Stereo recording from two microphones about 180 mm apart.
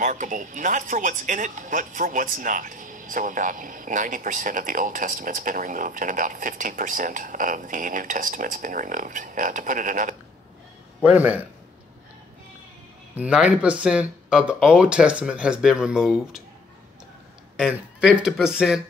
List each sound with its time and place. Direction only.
0.0 s speech: 45° right (ahead or behind)
11.0 s a man's voice: 5° right (ahead or behind)
13.1 s speech: 5° right (ahead or behind)
17.6 s speech: 5° right (ahead or behind)